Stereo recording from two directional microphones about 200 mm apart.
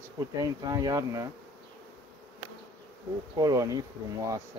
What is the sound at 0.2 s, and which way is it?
Bee, 15° right (ahead or behind).